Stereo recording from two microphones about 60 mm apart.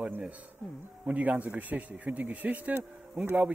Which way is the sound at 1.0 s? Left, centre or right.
Right.